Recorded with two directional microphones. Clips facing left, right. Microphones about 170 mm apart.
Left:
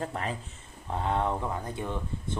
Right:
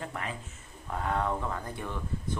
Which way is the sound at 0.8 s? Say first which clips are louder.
Left 2 dB; 25° left (ahead or behind).